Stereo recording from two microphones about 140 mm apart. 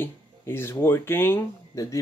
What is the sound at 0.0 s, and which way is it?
Speech, 15° left (ahead or behind).